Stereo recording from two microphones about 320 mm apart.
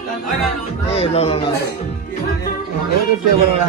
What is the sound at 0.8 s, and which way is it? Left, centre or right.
Speech, centre.